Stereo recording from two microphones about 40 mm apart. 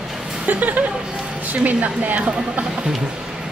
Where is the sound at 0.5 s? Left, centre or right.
Right.